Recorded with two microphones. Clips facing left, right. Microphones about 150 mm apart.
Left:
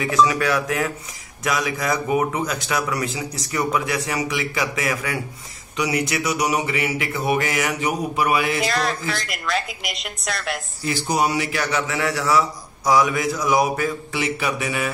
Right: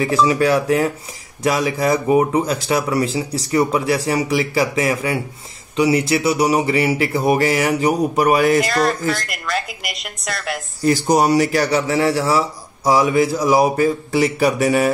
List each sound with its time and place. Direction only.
0.0 s a man's voice: 30° right (ahead or behind)
8.6 s a woman's voice: centre (ahead or behind)
10.8 s a man's voice: 40° right (ahead or behind)